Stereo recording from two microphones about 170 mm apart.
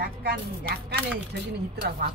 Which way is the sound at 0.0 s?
75° right (ahead or behind).